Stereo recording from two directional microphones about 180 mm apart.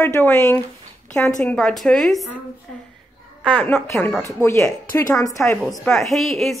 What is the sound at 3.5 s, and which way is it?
A woman's voice, 10° left (ahead or behind).